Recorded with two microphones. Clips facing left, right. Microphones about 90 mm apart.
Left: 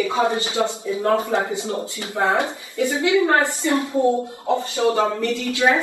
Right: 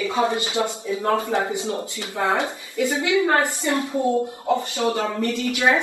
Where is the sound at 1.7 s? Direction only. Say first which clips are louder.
Left 2 dB; 25° left (ahead or behind).